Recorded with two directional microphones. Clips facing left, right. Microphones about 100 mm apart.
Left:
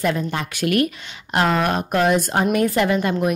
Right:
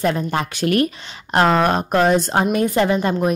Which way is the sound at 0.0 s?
35° right (ahead or behind).